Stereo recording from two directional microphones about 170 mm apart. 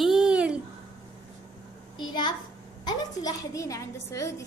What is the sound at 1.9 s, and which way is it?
A child's voice, 30° left (ahead or behind).